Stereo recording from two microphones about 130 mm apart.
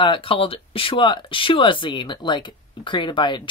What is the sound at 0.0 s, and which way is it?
Speech, 40° left (ahead or behind).